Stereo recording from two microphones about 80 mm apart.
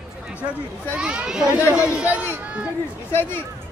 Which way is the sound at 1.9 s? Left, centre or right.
Centre.